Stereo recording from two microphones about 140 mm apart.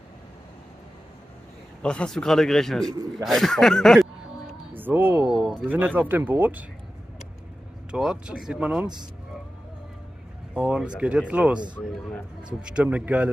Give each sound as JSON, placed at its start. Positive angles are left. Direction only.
{"t": 1.8, "sound": "speech", "side_deg": 5}
{"t": 2.9, "sound": "speech", "side_deg": -25}
{"t": 3.3, "sound": "speech", "side_deg": 0}
{"t": 4.7, "sound": "a sound", "side_deg": -15}
{"t": 5.4, "sound": "a sound", "side_deg": 0}
{"t": 5.7, "sound": "speech", "side_deg": -10}
{"t": 7.9, "sound": "speech", "side_deg": -5}
{"t": 10.5, "sound": "speech", "side_deg": -5}
{"t": 12.7, "sound": "speech", "side_deg": -10}